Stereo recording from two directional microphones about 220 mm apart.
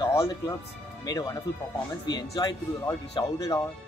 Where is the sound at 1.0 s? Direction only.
15° left (ahead or behind).